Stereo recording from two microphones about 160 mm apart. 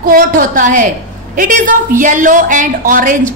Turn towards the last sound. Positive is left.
turn(degrees=-55)  # may be behind; listen again after turning